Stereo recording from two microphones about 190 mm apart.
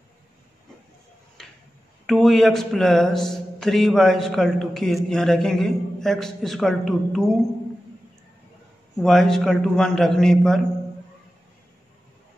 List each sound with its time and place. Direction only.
1.4 s a sound: centre (ahead or behind)
2.0 s a man's voice: centre (ahead or behind)
8.9 s a man's voice: centre (ahead or behind)